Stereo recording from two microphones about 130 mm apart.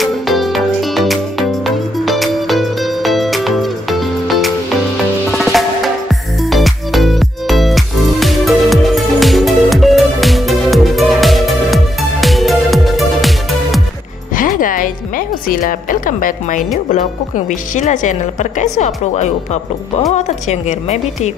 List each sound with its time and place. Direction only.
0.0 s music: centre (ahead or behind)
14.3 s music: 90° left
17.5 s a woman's voice: 70° left (ahead or behind)